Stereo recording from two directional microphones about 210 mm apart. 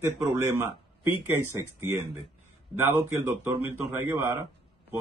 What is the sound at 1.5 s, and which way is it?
Speech, 10° right (ahead or behind).